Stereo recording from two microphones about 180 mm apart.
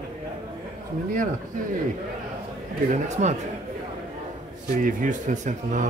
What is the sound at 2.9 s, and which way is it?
Speech, 40° right (ahead or behind).